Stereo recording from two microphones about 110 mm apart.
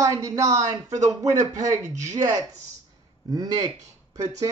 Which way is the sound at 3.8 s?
30° right (ahead or behind).